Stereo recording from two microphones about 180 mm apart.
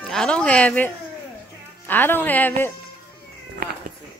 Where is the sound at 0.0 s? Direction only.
5° left (ahead or behind).